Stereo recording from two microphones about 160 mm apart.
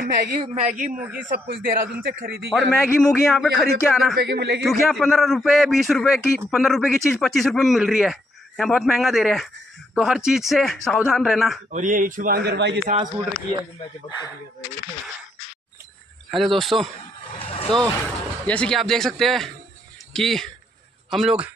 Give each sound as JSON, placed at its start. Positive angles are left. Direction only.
{"t": 0.0, "sound": "speech", "side_deg": -75}
{"t": 0.4, "sound": "a man's voice", "side_deg": -45}
{"t": 0.9, "sound": "a man's voice", "side_deg": -10}
{"t": 1.3, "sound": "a man's voice", "side_deg": -65}
{"t": 3.0, "sound": "a man's voice", "side_deg": 5}
{"t": 4.2, "sound": "a man's voice", "side_deg": -90}
{"t": 4.6, "sound": "a man's voice", "side_deg": 0}
{"t": 11.7, "sound": "a man's voice", "side_deg": -55}
{"t": 13.5, "sound": "speech", "side_deg": 45}
{"t": 16.3, "sound": "a man's voice", "side_deg": 0}
{"t": 17.4, "sound": "vehicle", "side_deg": 35}
{"t": 17.6, "sound": "a man's voice", "side_deg": 5}